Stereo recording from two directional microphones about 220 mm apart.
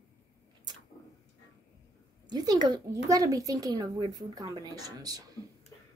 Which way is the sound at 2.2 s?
20° right (ahead or behind).